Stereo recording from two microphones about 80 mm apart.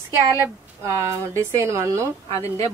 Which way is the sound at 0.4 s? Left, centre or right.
Right.